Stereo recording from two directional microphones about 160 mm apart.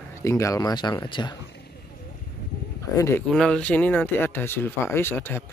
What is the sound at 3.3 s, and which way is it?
Speech, 5° left (ahead or behind).